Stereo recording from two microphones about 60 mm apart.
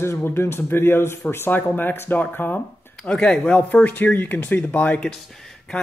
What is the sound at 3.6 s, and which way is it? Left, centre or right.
Speech, left.